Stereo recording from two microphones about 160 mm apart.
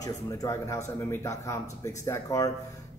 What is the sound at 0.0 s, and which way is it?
A man's voice, 20° left (ahead or behind).